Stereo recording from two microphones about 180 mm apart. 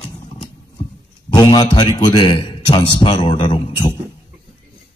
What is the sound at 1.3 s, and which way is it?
A man's voice, 25° left (ahead or behind).